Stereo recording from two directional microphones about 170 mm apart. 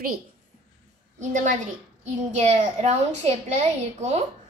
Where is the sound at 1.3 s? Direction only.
50° right (ahead or behind).